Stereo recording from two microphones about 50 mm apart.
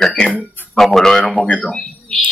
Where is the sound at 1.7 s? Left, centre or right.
Centre.